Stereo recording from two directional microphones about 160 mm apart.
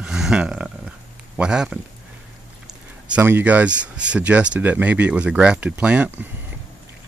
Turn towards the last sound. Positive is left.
turn(degrees=-10)  # may be behind; listen again after turning